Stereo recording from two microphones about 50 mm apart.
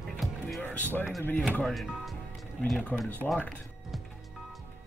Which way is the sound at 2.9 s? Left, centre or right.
Left.